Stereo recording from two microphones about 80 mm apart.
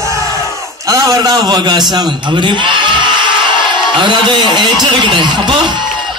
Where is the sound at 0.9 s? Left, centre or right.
Right.